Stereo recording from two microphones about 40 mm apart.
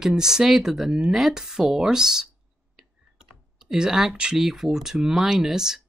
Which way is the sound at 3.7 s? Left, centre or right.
Centre.